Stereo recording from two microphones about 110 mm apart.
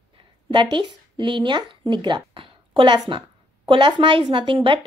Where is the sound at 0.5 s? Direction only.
45° right (ahead or behind).